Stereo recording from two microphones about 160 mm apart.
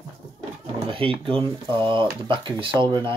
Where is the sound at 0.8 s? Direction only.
35° right (ahead or behind).